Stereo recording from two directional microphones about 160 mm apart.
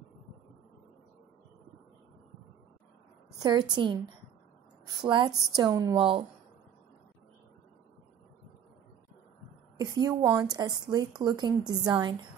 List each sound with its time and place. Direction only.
3.3 s a woman's voice: 25° right (ahead or behind)
5.0 s a woman's voice: 30° right (ahead or behind)
9.8 s a woman's voice: 25° right (ahead or behind)